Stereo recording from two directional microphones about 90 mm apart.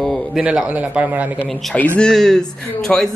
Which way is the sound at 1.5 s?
Centre (ahead or behind).